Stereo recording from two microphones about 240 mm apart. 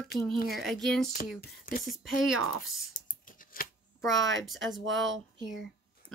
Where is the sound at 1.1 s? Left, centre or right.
Left.